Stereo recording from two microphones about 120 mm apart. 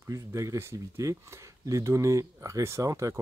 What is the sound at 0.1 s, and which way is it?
Speech, 25° right (ahead or behind).